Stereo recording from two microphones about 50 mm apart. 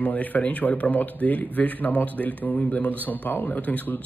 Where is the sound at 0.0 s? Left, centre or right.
Left.